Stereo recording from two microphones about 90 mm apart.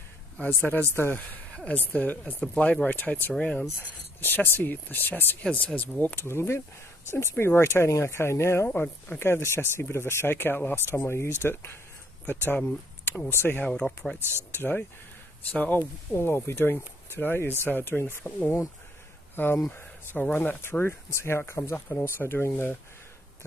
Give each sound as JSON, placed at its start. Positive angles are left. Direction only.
{"t": 0.6, "sound": "speech", "side_deg": 20}
{"t": 4.2, "sound": "speech", "side_deg": 25}
{"t": 8.6, "sound": "speech", "side_deg": 15}
{"t": 9.2, "sound": "speech", "side_deg": 30}
{"t": 13.7, "sound": "speech", "side_deg": 5}
{"t": 14.5, "sound": "speech", "side_deg": 25}